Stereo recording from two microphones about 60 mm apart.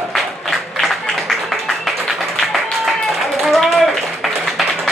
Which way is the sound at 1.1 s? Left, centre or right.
Centre.